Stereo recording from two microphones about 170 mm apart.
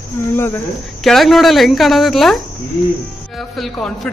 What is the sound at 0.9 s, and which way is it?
A man's voice, centre (ahead or behind).